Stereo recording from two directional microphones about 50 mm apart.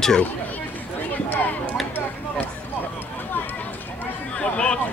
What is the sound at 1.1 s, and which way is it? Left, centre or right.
Speech, left.